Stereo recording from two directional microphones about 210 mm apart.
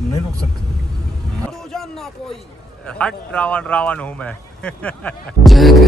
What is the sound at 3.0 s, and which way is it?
Speech, 5° left (ahead or behind).